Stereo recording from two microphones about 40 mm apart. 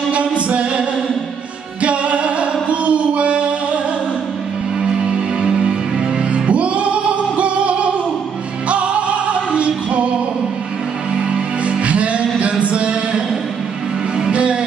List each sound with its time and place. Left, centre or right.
0.1 s music: right
4.8 s music: right
11.1 s music: right
12.4 s a sound: right
14.1 s music: right